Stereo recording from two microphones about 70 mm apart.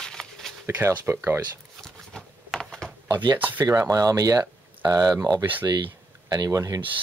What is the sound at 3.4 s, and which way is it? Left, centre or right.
Speech, right.